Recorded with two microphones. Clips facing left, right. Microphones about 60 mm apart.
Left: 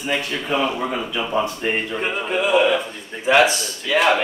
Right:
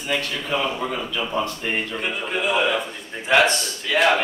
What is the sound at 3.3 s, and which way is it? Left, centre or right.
Speech, centre.